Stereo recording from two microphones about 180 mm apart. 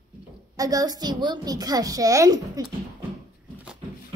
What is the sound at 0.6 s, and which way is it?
A woman's voice, 20° right (ahead or behind).